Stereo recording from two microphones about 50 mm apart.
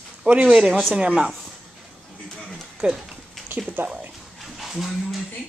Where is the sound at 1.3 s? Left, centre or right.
Centre.